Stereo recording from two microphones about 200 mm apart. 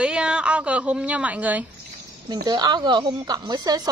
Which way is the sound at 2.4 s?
20° right (ahead or behind).